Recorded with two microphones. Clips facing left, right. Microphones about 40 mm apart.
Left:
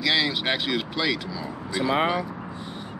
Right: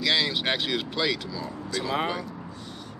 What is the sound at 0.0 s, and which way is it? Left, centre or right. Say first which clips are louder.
Speech: left 1 dB; centre.